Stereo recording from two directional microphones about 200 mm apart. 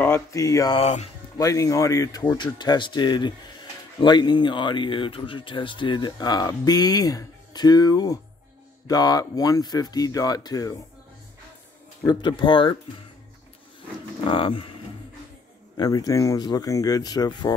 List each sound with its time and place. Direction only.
0.0 s speech: 15° left (ahead or behind)
0.7 s speech: 35° left (ahead or behind)
1.4 s speech: 15° left (ahead or behind)
12.1 s speech: 20° left (ahead or behind)
14.3 s speech: 25° left (ahead or behind)
15.8 s speech: 15° left (ahead or behind)